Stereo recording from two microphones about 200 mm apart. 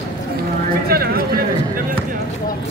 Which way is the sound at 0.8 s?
50° right (ahead or behind).